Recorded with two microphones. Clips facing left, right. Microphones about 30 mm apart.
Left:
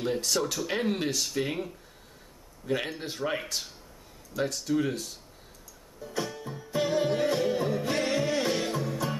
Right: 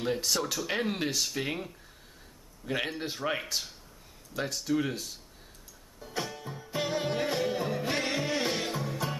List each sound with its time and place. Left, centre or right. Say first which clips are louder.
0.0 s speech: left 2 dB; centre
5.9 s music: left 2 dB; centre